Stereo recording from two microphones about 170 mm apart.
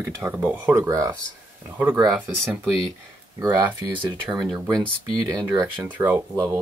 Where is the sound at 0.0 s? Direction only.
10° right (ahead or behind).